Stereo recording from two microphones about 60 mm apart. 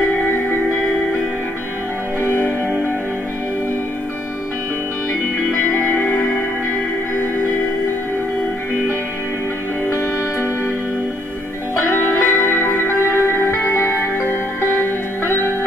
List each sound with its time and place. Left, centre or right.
5.8 s music: left
11.7 s music: left